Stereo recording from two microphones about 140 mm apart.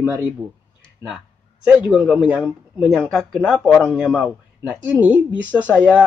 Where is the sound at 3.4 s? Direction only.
10° left (ahead or behind).